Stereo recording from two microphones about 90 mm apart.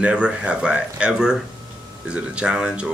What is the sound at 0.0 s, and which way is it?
Speech, 10° right (ahead or behind).